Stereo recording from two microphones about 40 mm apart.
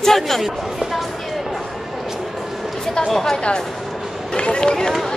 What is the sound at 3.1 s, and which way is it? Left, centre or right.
Chatter, centre.